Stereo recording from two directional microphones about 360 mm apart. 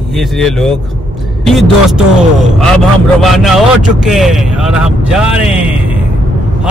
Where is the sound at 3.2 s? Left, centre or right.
Centre.